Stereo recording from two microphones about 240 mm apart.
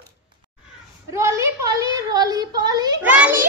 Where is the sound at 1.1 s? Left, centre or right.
Centre.